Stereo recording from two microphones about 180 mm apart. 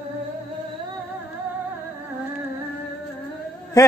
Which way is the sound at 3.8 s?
20° left (ahead or behind).